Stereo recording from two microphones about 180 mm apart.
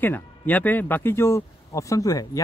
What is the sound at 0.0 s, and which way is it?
Speech, 10° left (ahead or behind).